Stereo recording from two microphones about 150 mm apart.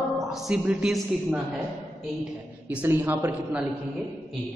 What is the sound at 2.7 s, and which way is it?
Speech, 15° right (ahead or behind).